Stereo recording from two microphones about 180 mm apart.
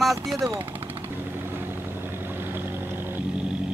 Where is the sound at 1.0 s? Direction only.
10° right (ahead or behind).